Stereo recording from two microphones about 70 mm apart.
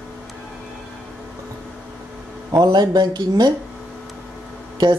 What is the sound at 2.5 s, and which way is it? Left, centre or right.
Speech, right.